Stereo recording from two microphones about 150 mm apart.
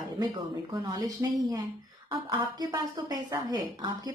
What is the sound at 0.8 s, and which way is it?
A woman's voice, 25° right (ahead or behind).